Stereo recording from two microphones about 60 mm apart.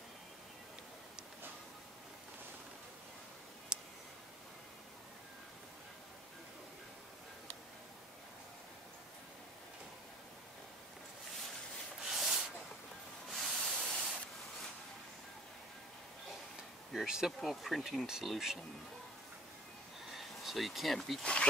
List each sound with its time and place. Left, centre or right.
3.7 s tick: centre
12.1 s rub: centre
13.3 s spray: centre
16.9 s speech: centre
20.1 s a sound: centre
21.2 s speech: centre